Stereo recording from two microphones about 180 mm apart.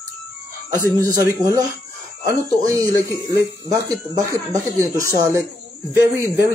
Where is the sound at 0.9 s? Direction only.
15° right (ahead or behind).